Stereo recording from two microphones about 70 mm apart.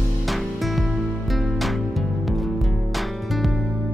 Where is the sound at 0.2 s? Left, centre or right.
Centre.